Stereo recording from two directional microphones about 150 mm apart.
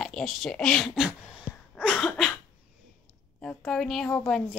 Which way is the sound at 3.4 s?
5° left (ahead or behind).